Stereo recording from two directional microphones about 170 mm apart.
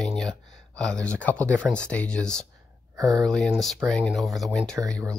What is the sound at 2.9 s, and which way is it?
Speech, 20° right (ahead or behind).